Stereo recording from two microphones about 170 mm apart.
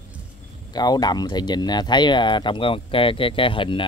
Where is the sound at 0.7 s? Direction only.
25° left (ahead or behind).